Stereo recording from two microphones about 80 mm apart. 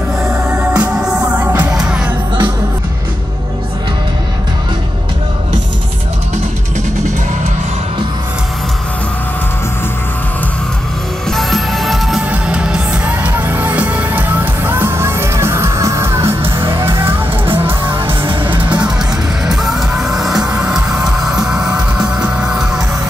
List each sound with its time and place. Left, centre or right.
0.2 s music: centre
1.7 s music: centre
11.2 s music: centre
12.3 s music: centre
18.2 s music: right
18.6 s music: right
19.4 s music: centre